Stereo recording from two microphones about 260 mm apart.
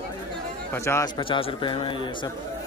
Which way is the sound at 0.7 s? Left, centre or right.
Centre.